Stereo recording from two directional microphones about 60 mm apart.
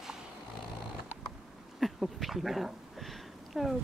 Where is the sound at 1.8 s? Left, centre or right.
Centre.